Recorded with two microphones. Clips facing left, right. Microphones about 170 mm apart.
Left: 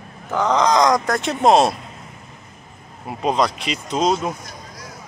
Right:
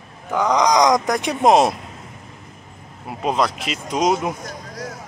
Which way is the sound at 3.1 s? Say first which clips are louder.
Left 1 dB; 5° right (ahead or behind).